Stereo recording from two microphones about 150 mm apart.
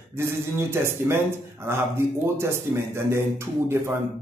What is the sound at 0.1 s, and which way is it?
Speech, 15° right (ahead or behind).